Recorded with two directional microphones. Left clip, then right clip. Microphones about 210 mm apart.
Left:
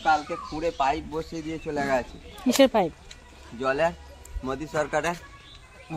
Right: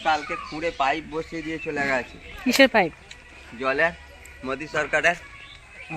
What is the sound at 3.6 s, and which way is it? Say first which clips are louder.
Speech: right 2 dB; 40° left (ahead or behind).